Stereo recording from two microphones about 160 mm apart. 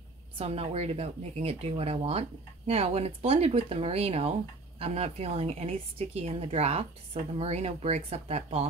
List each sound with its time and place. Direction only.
0.4 s speech: 40° right (ahead or behind)